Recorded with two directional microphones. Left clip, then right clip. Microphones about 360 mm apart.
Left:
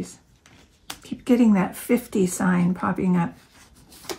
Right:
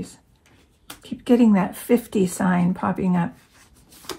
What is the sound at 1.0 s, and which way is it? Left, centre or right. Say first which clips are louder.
Speech: right 2 dB; centre.